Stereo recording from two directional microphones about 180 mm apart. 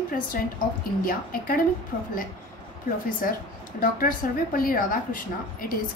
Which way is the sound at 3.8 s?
50° left (ahead or behind).